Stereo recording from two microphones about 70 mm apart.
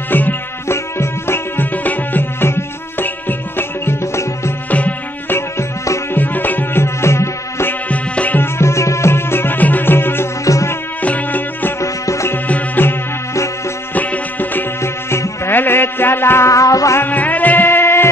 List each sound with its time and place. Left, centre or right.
0.1 s music: left
4.6 s music: left
7.9 s music: left
8.4 s music: left
10.4 s music: left
11.0 s music: left
11.8 s music: left
12.4 s music: left
13.9 s music: left
14.8 s music: left
17.0 s music: left